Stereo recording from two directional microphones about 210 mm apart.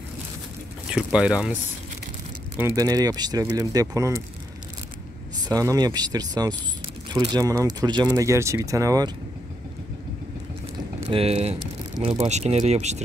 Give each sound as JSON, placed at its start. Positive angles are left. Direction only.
{"t": 0.8, "sound": "speech", "side_deg": -5}
{"t": 5.4, "sound": "speech", "side_deg": -15}
{"t": 11.1, "sound": "speech", "side_deg": -30}